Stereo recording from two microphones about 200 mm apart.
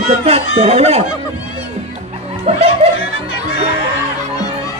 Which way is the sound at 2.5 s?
30° right (ahead or behind).